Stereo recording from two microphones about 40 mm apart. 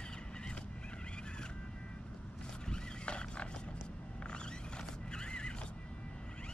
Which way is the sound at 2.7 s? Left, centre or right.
Left.